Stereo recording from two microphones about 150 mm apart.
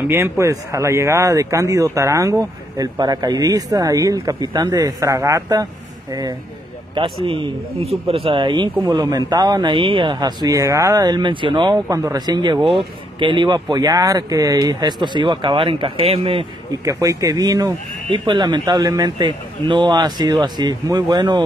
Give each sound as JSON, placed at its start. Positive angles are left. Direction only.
{"t": 0.1, "sound": "speech", "side_deg": -20}
{"t": 7.0, "sound": "speech", "side_deg": -35}
{"t": 16.8, "sound": "speech", "side_deg": -20}